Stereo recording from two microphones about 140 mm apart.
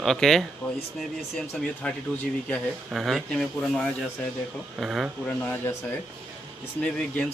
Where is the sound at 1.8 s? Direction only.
10° left (ahead or behind).